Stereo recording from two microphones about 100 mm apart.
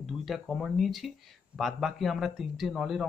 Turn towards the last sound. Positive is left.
turn(degrees=0)  # may be behind; listen again after turning